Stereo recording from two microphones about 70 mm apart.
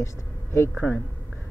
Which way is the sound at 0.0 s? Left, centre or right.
Left.